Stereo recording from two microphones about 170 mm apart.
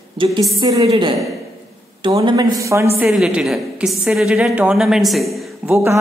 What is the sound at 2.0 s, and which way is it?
Speech, 25° right (ahead or behind).